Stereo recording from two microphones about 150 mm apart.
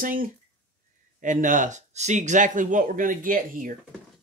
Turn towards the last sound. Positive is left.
turn(degrees=-65)  # may be behind; listen again after turning